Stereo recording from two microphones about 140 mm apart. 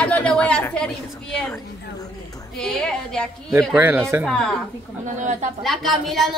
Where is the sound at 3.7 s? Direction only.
15° right (ahead or behind).